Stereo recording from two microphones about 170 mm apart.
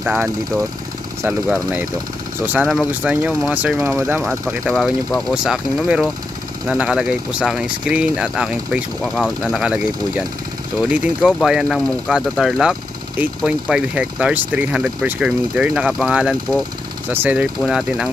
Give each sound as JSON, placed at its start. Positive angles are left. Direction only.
{"t": 0.0, "sound": "speech", "side_deg": 0}